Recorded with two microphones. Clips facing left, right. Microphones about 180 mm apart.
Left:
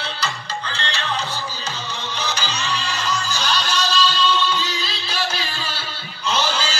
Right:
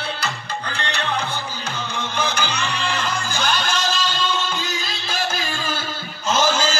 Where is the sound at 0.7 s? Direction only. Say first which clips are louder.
Right 1 dB; 60° right (ahead or behind).